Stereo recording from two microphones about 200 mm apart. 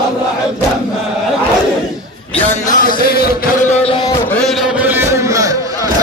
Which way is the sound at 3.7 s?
30° left (ahead or behind).